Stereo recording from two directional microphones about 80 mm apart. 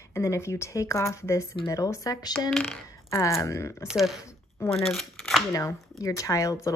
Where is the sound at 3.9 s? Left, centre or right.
Centre.